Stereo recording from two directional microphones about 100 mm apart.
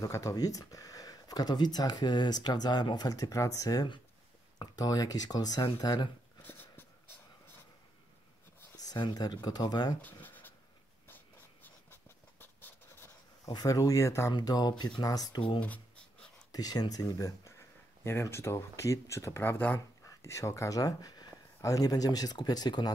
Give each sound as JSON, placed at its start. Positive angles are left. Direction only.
{"t": 0.0, "sound": "speech", "side_deg": 35}
{"t": 6.4, "sound": "a sound", "side_deg": 20}
{"t": 8.7, "sound": "speech", "side_deg": 40}
{"t": 10.2, "sound": "writing", "side_deg": 20}
{"t": 13.5, "sound": "speech", "side_deg": 40}
{"t": 14.3, "sound": "speech", "side_deg": 40}
{"t": 15.6, "sound": "writing", "side_deg": 10}
{"t": 16.5, "sound": "speech", "side_deg": 45}
{"t": 17.5, "sound": "speech", "side_deg": 25}